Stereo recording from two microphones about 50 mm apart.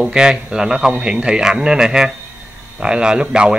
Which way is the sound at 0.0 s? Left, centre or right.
Centre.